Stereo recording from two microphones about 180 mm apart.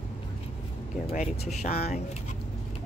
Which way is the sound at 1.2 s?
40° left (ahead or behind).